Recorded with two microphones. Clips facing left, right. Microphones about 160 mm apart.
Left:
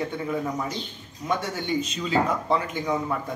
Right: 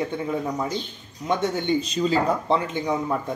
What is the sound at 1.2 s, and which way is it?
A man's voice, 25° right (ahead or behind).